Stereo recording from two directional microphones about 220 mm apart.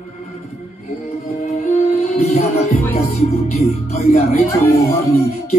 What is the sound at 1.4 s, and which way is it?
Music, 30° left (ahead or behind).